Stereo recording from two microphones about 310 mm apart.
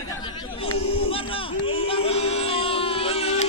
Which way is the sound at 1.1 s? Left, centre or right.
Centre.